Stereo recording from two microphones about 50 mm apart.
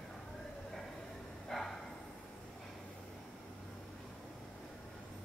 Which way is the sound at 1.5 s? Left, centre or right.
Centre.